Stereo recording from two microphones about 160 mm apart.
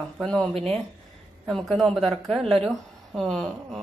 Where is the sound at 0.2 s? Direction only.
5° left (ahead or behind).